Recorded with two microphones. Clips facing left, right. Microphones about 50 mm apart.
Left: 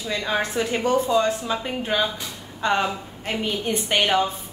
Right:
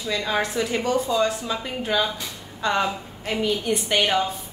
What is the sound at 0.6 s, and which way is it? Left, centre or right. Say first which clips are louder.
Speech: left 2 dB; left.